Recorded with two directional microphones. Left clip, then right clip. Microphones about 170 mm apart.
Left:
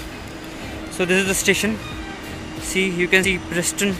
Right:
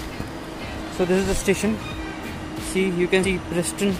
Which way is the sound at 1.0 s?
5° left (ahead or behind).